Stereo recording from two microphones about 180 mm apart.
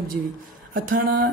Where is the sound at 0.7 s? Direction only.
50° right (ahead or behind).